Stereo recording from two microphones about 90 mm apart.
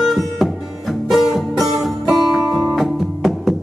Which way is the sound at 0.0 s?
Centre (ahead or behind).